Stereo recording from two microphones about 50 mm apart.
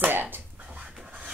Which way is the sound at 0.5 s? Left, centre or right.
Right.